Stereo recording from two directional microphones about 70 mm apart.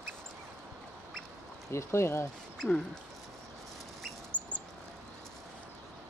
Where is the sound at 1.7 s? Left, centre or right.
Left.